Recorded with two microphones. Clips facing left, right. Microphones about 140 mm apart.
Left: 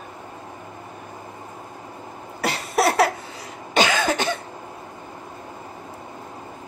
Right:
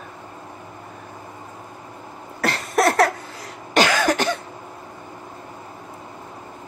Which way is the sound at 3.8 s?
Centre (ahead or behind).